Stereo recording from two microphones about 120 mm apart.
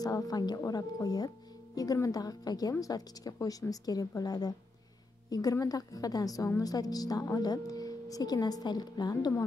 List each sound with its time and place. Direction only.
0.0 s a woman's voice: 30° left (ahead or behind)